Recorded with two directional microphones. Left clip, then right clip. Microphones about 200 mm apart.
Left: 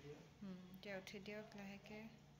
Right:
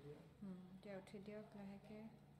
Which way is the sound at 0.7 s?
5° right (ahead or behind).